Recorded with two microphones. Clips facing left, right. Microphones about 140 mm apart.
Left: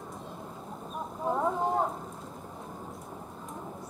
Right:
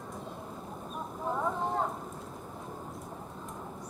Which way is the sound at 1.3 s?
15° left (ahead or behind).